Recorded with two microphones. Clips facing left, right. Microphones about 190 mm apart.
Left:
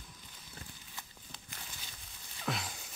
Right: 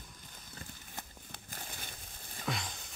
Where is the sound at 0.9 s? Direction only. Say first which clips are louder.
Right 3 dB; 50° right (ahead or behind).